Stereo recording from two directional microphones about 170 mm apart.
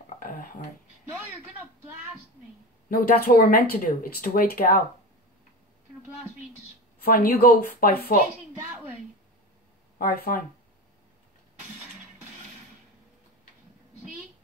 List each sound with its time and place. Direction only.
0.2 s a sound: 55° left (ahead or behind)
2.9 s speech: 60° left (ahead or behind)
7.0 s speech: 60° left (ahead or behind)
9.9 s speech: 60° left (ahead or behind)